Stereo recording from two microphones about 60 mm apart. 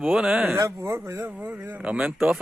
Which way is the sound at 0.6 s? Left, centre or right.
Right.